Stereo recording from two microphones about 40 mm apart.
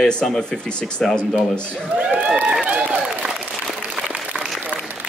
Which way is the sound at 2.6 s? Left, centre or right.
Right.